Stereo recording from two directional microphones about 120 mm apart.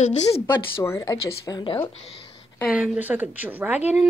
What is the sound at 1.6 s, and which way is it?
Speech, 40° left (ahead or behind).